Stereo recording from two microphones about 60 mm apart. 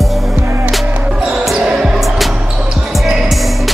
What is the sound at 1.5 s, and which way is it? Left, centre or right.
Basketball bounce, centre.